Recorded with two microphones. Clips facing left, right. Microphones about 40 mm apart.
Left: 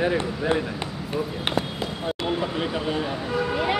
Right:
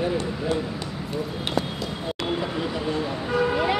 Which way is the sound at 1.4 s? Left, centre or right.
Left.